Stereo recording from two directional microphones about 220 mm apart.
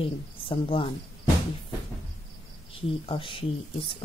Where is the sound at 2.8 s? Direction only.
25° left (ahead or behind).